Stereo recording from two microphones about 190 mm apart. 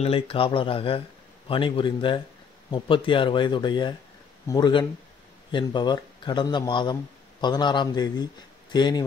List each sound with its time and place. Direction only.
0.0 s speech: 30° left (ahead or behind)